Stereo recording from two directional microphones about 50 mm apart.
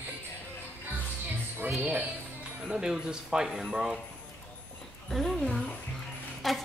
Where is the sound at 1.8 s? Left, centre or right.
Right.